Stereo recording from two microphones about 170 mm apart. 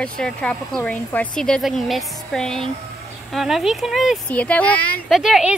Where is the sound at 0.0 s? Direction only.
5° left (ahead or behind).